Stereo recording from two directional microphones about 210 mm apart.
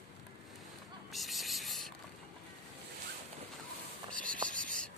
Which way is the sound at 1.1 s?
Centre (ahead or behind).